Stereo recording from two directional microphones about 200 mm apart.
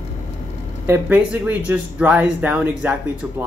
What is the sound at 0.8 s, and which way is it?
Speech, 10° right (ahead or behind).